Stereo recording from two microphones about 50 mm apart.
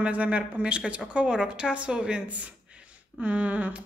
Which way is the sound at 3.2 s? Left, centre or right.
Right.